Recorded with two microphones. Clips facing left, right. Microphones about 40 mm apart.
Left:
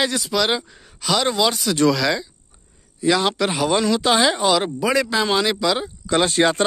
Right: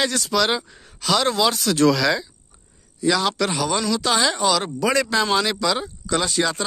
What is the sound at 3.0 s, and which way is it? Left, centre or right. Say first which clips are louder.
Speech: left 2 dB; centre.